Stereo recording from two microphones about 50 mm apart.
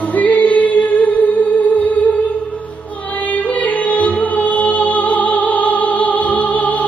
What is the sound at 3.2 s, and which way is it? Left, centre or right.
Music, left.